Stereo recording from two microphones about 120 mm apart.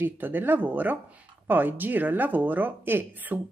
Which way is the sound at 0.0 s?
15° right (ahead or behind).